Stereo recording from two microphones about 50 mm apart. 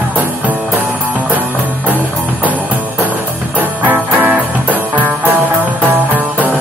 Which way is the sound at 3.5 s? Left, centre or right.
Right.